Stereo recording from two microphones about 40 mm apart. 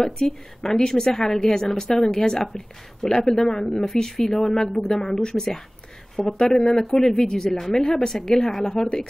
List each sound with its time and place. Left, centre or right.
0.6 s speech: centre